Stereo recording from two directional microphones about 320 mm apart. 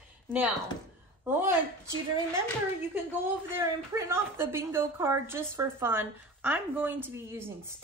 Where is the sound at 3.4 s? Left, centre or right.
Centre.